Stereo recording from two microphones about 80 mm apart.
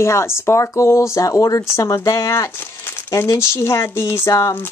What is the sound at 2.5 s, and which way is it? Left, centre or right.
Speech, left.